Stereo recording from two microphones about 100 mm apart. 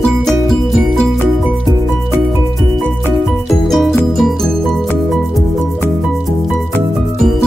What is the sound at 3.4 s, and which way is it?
Music, centre (ahead or behind).